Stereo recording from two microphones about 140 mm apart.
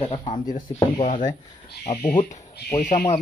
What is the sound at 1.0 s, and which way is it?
Speech, 65° left (ahead or behind).